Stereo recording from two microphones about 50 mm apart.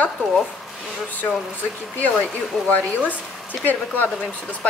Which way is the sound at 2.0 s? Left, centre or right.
Left.